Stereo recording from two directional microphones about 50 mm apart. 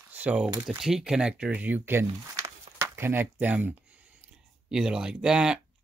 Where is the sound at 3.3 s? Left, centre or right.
Right.